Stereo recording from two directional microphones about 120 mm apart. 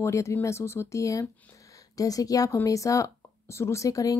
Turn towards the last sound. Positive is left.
turn(degrees=30)  # may be behind; listen again after turning